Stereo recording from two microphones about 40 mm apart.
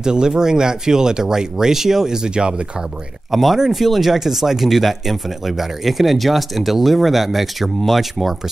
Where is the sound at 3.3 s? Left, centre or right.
Centre.